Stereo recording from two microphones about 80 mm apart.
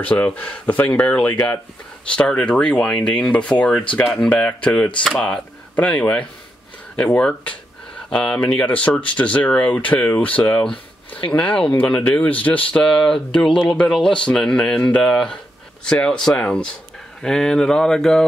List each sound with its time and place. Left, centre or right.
0.0 s speech: centre